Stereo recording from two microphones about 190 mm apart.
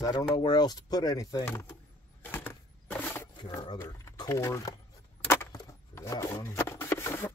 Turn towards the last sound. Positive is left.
turn(degrees=15)  # may be behind; listen again after turning